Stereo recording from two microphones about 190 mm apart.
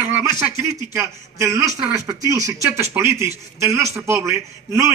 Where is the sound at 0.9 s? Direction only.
15° right (ahead or behind).